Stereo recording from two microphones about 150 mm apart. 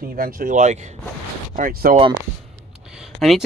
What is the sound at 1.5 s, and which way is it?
Speech, 80° right.